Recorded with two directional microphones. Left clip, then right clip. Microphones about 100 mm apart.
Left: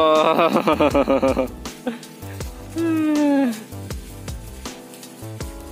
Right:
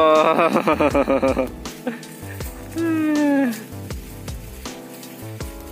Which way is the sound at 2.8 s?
15° left (ahead or behind).